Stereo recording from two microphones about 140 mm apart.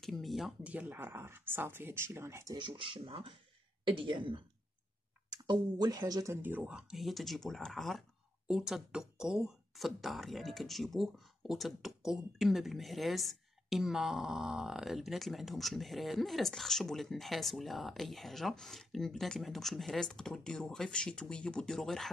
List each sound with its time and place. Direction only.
0.0 s speech: centre (ahead or behind); by 2.5 s 20° right (ahead or behind)
2.5 s speech: 35° right (ahead or behind)
6.3 s speech: 15° right (ahead or behind)